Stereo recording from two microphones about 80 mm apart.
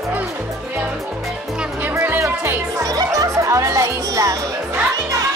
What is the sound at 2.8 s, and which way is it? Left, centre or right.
Music, right.